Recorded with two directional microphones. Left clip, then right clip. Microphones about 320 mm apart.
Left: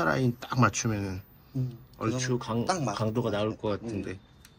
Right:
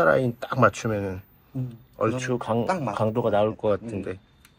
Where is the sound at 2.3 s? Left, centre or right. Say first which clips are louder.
Right 5 dB; right.